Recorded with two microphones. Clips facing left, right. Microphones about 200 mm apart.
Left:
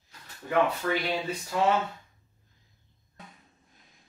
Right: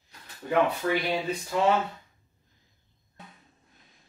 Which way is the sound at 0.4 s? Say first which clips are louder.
Right 1 dB; 15° right (ahead or behind).